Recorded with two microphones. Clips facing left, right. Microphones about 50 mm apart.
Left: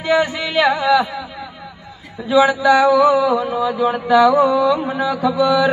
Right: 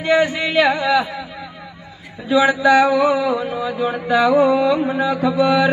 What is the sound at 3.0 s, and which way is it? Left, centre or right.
Mantra, right.